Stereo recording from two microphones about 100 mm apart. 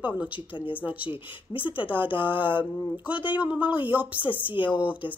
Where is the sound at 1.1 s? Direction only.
60° left (ahead or behind).